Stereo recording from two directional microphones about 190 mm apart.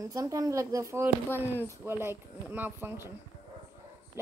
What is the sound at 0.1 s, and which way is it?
A woman's voice, 20° right (ahead or behind).